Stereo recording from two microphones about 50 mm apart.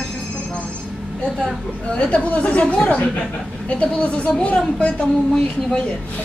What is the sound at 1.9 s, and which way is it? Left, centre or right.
Speech, left.